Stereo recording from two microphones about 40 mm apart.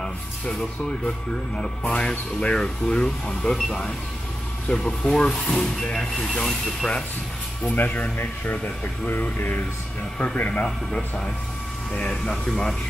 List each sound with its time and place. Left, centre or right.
0.0 s speech: centre
4.7 s speech: left
5.0 s speech: centre
7.6 s speech: left
8.2 s speech: left
10.5 s a man's voice: left
12.3 s speech: centre